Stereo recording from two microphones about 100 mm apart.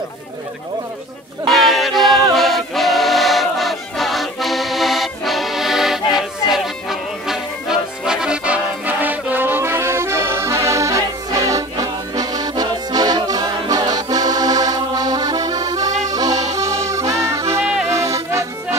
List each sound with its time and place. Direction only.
1.5 s music: centre (ahead or behind); by 18.8 s 30° right (ahead or behind)